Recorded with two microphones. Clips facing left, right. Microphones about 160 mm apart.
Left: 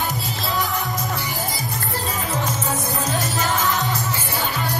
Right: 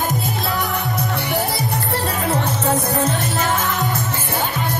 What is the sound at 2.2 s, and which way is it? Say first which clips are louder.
Music: right 6 dB; 60° right (ahead or behind).